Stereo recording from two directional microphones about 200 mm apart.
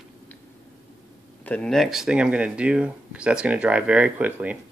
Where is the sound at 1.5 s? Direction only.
5° left (ahead or behind).